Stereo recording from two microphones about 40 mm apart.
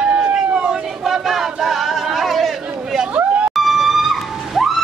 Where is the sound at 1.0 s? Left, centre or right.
Centre.